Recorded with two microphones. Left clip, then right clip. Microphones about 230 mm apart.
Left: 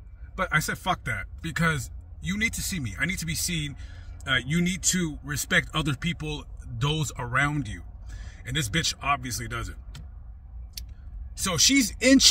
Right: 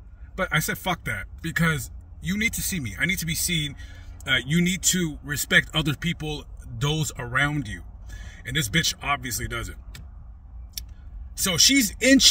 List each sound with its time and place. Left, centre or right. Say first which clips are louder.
0.4 s a man's voice: right 1 dB; centre
11.3 s a man's voice: right 3 dB; centre